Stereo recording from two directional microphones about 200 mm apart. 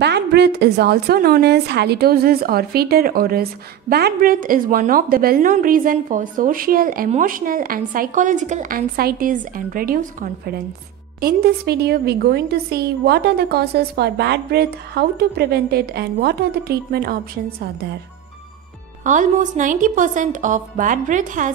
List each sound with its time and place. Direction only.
0.0 s a woman's voice: 55° right (ahead or behind)
19.0 s a woman's voice: 40° right (ahead or behind)